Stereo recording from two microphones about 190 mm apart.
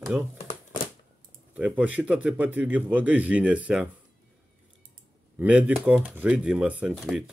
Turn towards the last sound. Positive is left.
turn(degrees=0)  # may be behind; listen again after turning